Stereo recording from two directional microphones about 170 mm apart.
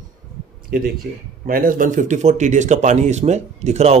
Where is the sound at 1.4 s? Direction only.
55° right (ahead or behind).